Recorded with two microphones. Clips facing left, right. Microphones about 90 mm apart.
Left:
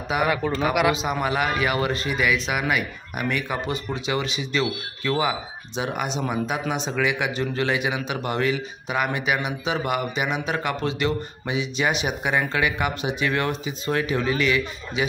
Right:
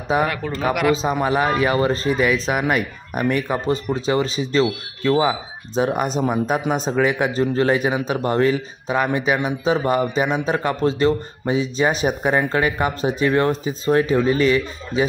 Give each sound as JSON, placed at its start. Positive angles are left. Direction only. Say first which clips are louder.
{"t": 0.3, "sound": "speech", "louder": "left 2 dB", "side_deg": 5}
{"t": 1.2, "sound": "a man's voice", "louder": "right 4 dB", "side_deg": -35}